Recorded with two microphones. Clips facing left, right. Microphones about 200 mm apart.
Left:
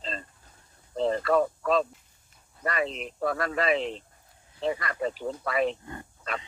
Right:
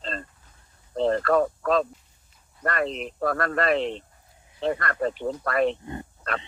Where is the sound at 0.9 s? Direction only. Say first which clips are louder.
Right 3 dB; centre (ahead or behind).